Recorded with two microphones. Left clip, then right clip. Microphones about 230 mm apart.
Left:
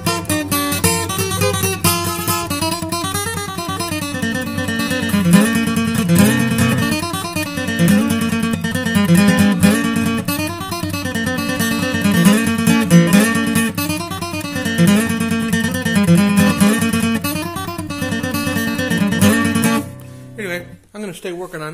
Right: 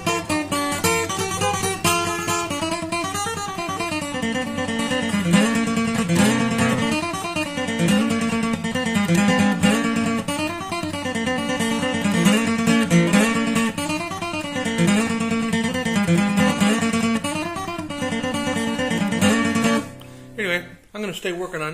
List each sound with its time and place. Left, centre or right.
4.2 s music: left
8.7 s guitar: left
11.2 s music: left
14.7 s guitar: left
15.5 s music: left
18.1 s music: left